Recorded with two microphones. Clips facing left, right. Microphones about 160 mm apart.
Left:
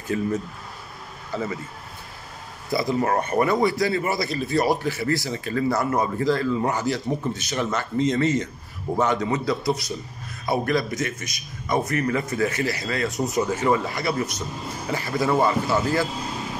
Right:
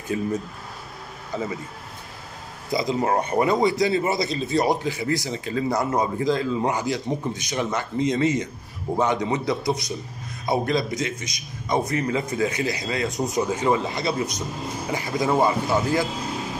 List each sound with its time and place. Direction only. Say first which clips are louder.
0.1 s speech: left 1 dB; 15° right (ahead or behind)
1.3 s speech: even; 15° right (ahead or behind)
2.7 s a man's voice: even; 20° right (ahead or behind)